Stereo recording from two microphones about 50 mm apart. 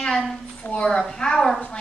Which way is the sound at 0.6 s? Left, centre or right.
Left.